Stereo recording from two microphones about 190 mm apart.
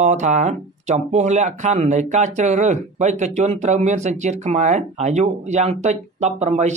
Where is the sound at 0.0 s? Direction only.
40° right (ahead or behind).